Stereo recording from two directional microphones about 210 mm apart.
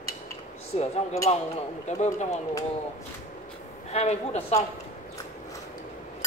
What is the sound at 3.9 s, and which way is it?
Speech, 30° left (ahead or behind).